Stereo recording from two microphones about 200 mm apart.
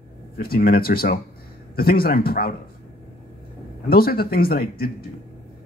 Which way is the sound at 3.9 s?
50° left (ahead or behind).